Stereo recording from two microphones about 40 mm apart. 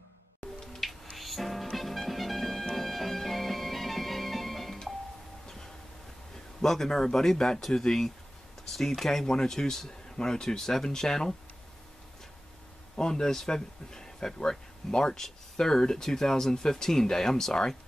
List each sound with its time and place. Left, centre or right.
1.1 s music: centre
6.6 s speech: centre
12.9 s speech: centre